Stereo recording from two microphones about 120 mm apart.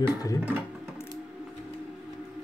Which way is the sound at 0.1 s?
30° left (ahead or behind).